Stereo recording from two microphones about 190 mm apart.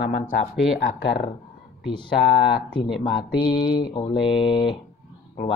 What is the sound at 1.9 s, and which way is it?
Speech, 25° left (ahead or behind).